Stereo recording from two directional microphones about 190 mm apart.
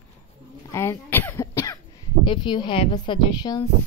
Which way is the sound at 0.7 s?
15° left (ahead or behind).